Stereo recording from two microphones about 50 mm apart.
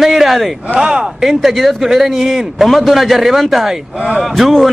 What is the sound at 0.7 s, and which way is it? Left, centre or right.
A man's voice, centre.